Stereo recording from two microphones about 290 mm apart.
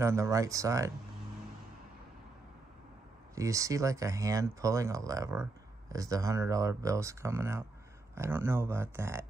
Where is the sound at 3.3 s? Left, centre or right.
Centre.